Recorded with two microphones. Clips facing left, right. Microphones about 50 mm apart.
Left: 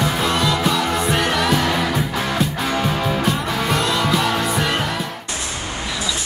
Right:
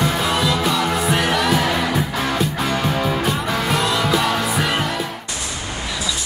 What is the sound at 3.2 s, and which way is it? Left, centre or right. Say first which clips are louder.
Music: even; centre.